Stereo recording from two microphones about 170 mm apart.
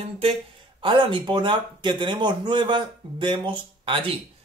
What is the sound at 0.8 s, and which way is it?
Speech, 30° right (ahead or behind).